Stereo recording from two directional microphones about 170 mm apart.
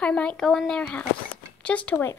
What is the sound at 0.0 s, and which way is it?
Speech, 5° left (ahead or behind).